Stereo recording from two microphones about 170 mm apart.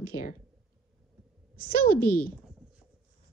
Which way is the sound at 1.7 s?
60° left (ahead or behind).